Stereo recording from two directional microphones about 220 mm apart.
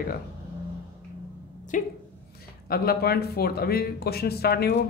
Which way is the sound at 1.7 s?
35° left (ahead or behind).